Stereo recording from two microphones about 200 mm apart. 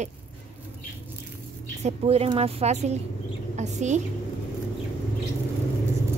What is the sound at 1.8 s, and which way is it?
A woman's voice, 30° right (ahead or behind).